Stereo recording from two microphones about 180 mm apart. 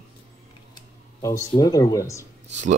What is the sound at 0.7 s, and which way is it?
Speech, 15° left (ahead or behind).